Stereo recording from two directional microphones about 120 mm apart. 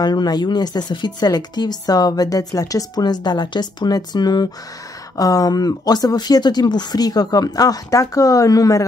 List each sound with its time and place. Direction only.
0.0 s speech: 35° left (ahead or behind)